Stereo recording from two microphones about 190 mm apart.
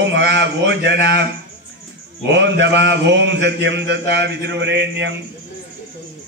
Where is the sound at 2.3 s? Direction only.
70° right (ahead or behind).